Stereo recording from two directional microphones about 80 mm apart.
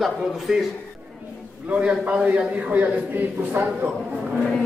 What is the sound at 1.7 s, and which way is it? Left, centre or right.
A man's voice, centre.